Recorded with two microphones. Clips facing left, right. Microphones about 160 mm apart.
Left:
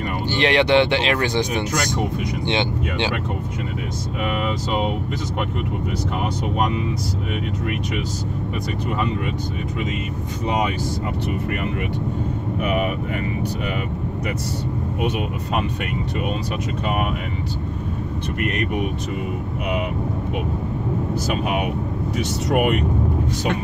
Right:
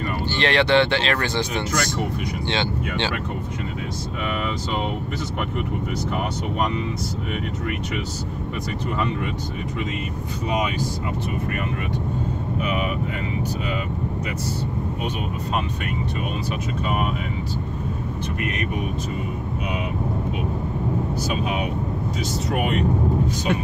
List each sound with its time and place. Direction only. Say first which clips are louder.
0.3 s speech: left 2 dB; 15° left (ahead or behind)
21.3 s speech: left 4 dB; 60° left (ahead or behind)